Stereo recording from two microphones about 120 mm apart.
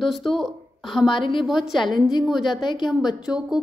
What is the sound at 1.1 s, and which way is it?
Speech, 40° left (ahead or behind).